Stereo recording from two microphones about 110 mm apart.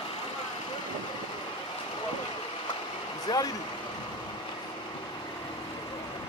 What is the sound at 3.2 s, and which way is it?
Vehicle, 35° left (ahead or behind).